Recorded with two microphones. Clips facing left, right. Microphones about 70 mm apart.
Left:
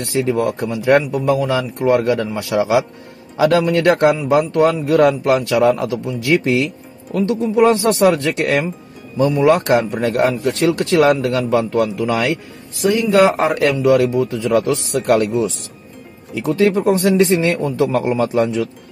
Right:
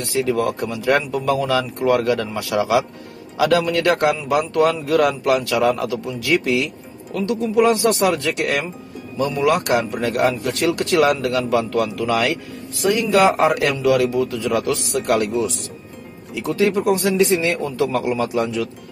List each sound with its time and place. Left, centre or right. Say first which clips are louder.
0.0 s a man's voice: left 2 dB; left
16.3 s speech: left 3 dB; left
16.8 s a man's voice: left 3 dB; left